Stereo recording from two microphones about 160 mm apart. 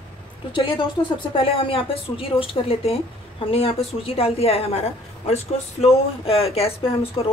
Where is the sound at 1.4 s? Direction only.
35° left (ahead or behind).